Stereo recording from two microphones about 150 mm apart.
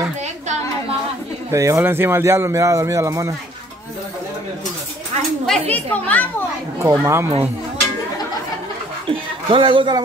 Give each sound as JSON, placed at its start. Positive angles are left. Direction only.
{"t": 1.5, "sound": "speech", "side_deg": -20}
{"t": 5.5, "sound": "speech", "side_deg": 10}
{"t": 6.8, "sound": "speech", "side_deg": -20}
{"t": 9.0, "sound": "speech", "side_deg": -35}